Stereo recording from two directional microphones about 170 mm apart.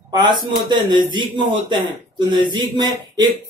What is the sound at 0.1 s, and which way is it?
A man's voice, 25° right (ahead or behind).